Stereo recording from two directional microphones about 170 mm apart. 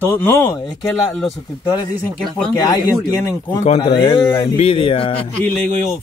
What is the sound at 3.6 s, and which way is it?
Speech, 35° left (ahead or behind).